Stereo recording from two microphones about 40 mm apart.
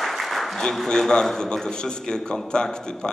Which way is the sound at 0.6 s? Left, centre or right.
Centre.